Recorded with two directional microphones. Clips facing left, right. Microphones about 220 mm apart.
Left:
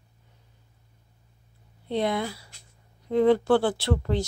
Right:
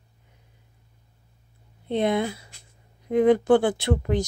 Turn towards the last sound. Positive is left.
turn(degrees=-15)  # may be behind; listen again after turning